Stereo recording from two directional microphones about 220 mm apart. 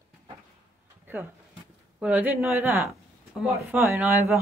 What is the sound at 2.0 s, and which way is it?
A woman's voice, 5° right (ahead or behind).